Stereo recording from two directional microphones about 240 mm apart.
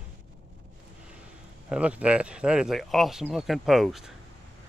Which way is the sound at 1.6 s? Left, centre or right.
Centre.